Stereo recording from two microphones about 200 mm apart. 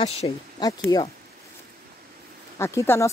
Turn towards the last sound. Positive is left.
turn(degrees=15)  # may be behind; listen again after turning